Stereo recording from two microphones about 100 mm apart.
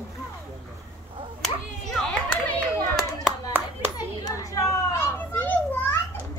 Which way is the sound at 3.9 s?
40° left (ahead or behind).